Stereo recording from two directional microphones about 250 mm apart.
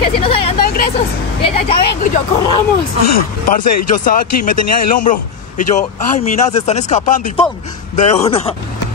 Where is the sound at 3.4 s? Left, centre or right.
Left.